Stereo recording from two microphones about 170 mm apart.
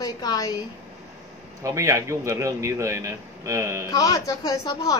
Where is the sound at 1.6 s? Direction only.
20° right (ahead or behind).